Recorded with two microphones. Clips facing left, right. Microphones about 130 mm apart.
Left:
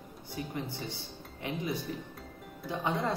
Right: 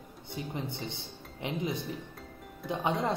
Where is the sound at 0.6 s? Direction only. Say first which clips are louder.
Right 1 dB; 20° right (ahead or behind).